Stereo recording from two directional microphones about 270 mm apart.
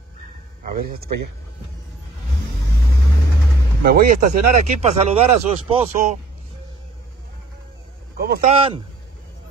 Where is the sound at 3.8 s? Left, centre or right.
Right.